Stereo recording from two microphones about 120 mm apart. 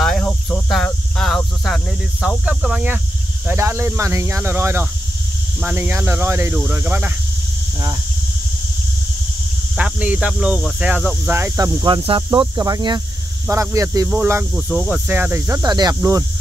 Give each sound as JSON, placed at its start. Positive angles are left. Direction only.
{"t": 0.0, "sound": "cricket", "side_deg": 5}
{"t": 0.7, "sound": "speech", "side_deg": 5}
{"t": 9.8, "sound": "speech", "side_deg": -10}
{"t": 14.0, "sound": "speech", "side_deg": -10}
{"t": 15.0, "sound": "speech", "side_deg": -15}
{"t": 15.6, "sound": "speech", "side_deg": -35}